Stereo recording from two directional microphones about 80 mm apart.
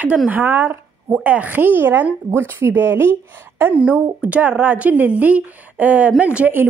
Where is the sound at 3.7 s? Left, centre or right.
Centre.